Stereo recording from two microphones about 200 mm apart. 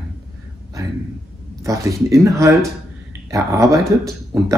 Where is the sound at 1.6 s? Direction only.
15° right (ahead or behind).